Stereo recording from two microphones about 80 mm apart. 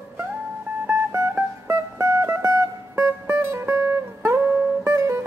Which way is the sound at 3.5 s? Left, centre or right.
Right.